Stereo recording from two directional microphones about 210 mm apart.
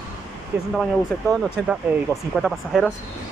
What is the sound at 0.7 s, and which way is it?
Speech, centre (ahead or behind).